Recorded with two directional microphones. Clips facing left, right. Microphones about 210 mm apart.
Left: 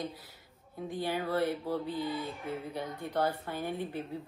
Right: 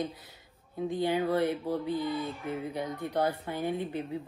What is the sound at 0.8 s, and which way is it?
Speech, 20° right (ahead or behind).